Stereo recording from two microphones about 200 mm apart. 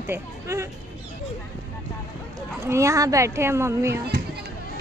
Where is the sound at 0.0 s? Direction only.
10° right (ahead or behind).